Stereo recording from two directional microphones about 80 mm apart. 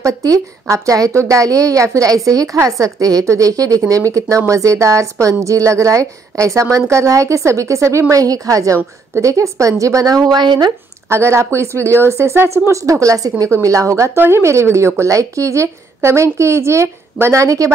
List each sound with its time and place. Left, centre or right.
0.0 s a woman's voice: right
10.3 s speech: right
11.1 s speech: right
14.1 s speech: right